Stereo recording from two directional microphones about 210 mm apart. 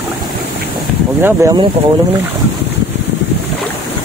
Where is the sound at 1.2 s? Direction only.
15° right (ahead or behind).